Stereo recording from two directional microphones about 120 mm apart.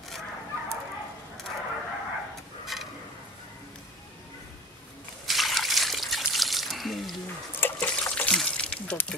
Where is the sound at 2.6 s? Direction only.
Centre (ahead or behind).